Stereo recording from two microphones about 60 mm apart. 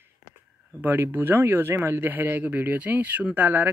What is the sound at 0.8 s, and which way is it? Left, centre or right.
Speech, right.